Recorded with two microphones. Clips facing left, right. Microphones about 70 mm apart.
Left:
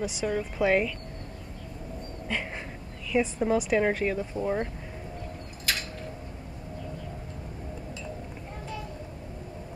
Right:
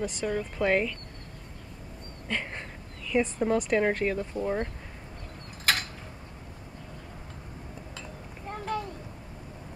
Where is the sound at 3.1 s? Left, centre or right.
Centre.